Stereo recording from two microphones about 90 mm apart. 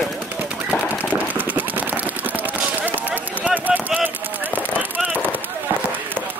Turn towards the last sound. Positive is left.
turn(degrees=-15)  # may be behind; listen again after turning